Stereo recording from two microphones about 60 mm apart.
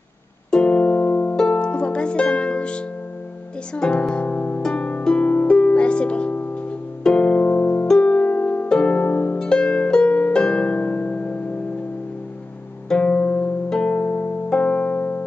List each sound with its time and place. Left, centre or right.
0.5 s music: centre
1.3 s music: centre
4.6 s harp: centre
8.0 s music: left
8.6 s harp: centre
9.4 s harp: centre
12.9 s music: centre